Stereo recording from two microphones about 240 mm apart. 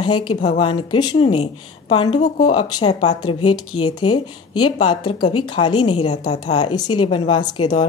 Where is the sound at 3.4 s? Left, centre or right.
Left.